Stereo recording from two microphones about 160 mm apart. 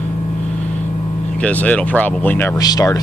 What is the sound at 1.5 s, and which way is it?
Speech, 10° left (ahead or behind).